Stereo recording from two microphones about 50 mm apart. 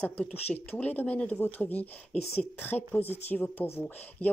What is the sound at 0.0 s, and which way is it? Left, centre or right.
Speech, left.